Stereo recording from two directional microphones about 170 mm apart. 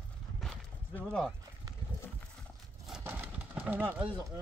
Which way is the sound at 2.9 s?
10° right (ahead or behind).